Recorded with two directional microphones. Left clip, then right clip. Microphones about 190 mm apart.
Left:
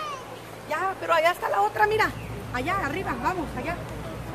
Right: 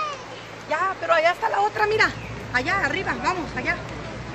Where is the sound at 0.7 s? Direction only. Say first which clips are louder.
Right 3 dB; 60° left (ahead or behind); by 3.3 s 40° left (ahead or behind).